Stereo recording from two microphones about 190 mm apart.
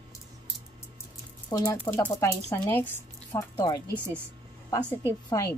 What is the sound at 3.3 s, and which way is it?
A woman's voice, 20° left (ahead or behind).